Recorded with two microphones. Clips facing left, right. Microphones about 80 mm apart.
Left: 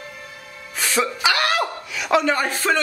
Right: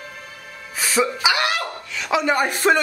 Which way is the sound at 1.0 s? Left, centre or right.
Centre.